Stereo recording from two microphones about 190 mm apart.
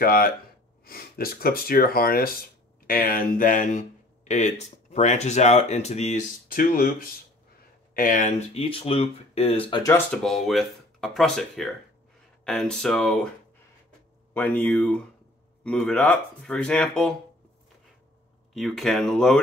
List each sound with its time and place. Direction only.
0.0 s speech: 50° left (ahead or behind)
7.9 s speech: 45° left (ahead or behind); by 9.9 s 25° left (ahead or behind)
9.9 s speech: centre (ahead or behind)
14.3 s speech: 10° left (ahead or behind)
18.5 s speech: centre (ahead or behind)